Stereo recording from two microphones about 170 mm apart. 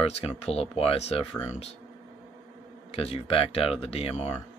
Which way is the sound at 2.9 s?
35° left (ahead or behind).